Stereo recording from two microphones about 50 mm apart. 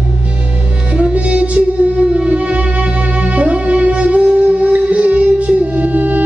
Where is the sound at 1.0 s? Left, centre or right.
Right.